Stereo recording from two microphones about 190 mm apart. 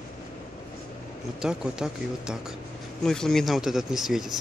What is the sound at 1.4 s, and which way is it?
Speech, 5° right (ahead or behind).